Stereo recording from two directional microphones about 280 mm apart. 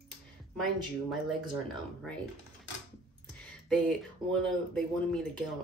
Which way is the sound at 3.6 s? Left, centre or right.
Centre.